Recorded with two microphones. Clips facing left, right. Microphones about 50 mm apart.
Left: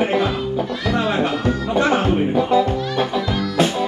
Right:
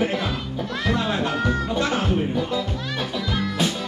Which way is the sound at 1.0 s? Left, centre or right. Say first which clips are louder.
Left 4 dB; left.